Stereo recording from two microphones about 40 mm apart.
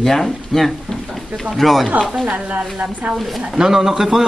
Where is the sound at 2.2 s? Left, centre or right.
Right.